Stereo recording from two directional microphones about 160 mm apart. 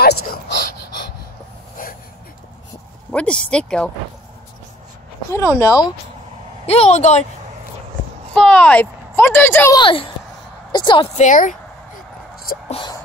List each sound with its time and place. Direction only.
0.0 s speech: 80° left
1.8 s a sound: 60° left (ahead or behind)
3.1 s speech: 5° left (ahead or behind)
5.6 s speech: 20° left (ahead or behind)
6.6 s speech: 40° left (ahead or behind)
8.3 s speech: 5° left (ahead or behind)
9.8 s a woman's voice: 30° left (ahead or behind)
11.1 s a sound: 50° left (ahead or behind)
12.6 s music: 35° left (ahead or behind)